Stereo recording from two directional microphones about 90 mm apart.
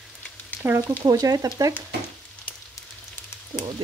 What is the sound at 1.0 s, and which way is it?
Speech, 45° right (ahead or behind).